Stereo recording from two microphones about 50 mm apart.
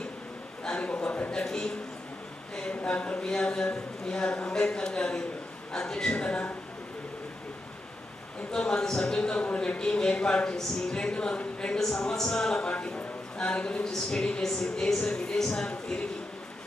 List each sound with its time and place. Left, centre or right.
0.7 s a man's voice: left
1.3 s a man's voice: centre
8.5 s a man's voice: centre